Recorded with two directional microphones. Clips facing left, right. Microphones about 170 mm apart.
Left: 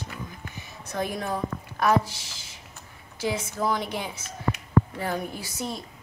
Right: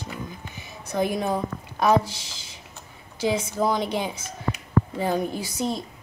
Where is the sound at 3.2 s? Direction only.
20° right (ahead or behind).